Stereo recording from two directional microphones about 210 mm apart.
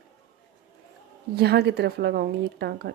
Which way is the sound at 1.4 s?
50° right (ahead or behind).